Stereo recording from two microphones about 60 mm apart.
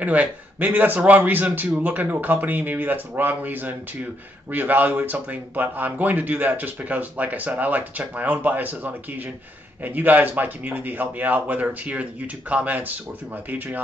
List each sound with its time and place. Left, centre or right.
0.0 s a man's voice: right